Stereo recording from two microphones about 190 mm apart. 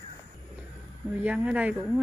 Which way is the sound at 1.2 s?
5° right (ahead or behind).